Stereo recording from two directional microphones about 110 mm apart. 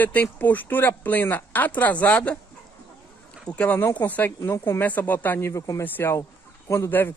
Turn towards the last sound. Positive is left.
turn(degrees=20)  # may be behind; listen again after turning